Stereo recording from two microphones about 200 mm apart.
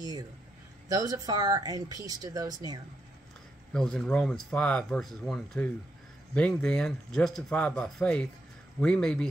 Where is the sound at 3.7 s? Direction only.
5° left (ahead or behind).